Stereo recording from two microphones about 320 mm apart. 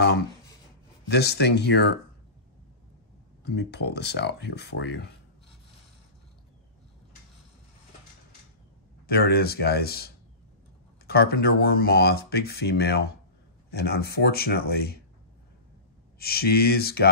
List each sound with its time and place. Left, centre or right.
1.0 s speech: left
3.4 s speech: left
9.0 s speech: left
16.2 s speech: left